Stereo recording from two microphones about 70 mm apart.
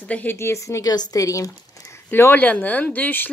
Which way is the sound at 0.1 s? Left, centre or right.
Left.